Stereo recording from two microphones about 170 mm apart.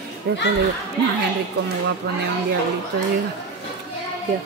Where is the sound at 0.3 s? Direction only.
70° right (ahead or behind).